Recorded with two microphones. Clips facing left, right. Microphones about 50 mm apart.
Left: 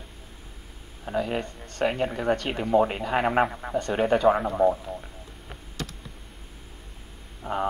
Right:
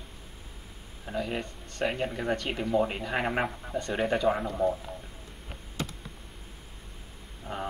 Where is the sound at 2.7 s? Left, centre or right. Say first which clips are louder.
Left 6 dB; left.